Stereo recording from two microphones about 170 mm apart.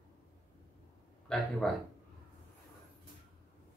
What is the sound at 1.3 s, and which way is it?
Speech, 5° left (ahead or behind).